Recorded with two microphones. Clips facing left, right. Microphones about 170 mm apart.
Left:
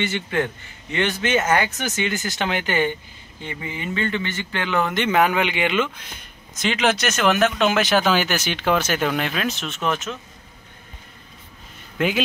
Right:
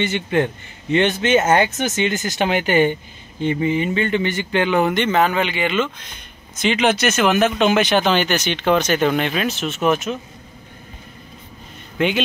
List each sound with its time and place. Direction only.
0.0 s speech: 20° right (ahead or behind)
4.9 s speech: 10° left (ahead or behind)
6.5 s speech: centre (ahead or behind)
12.0 s speech: 5° left (ahead or behind)